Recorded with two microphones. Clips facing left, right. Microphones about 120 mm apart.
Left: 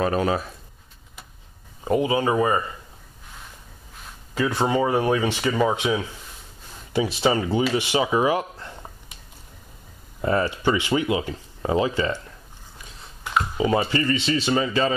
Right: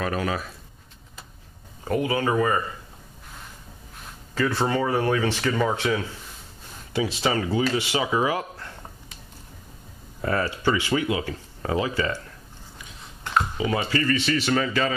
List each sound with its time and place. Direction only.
0.0 s speech: 30° left (ahead or behind)
1.9 s speech: 20° left (ahead or behind)
4.4 s speech: 15° left (ahead or behind)
7.2 s speech: 20° left (ahead or behind)
10.2 s speech: 20° left (ahead or behind)
13.6 s speech: 30° left (ahead or behind)